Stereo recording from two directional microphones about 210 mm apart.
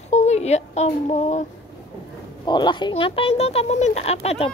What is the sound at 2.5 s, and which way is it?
Speech, 20° left (ahead or behind).